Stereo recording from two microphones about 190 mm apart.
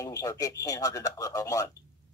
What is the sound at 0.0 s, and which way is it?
Speech, 15° left (ahead or behind).